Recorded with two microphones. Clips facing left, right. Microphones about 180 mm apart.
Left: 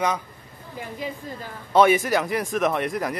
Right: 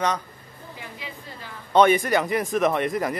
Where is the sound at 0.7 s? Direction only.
45° left (ahead or behind).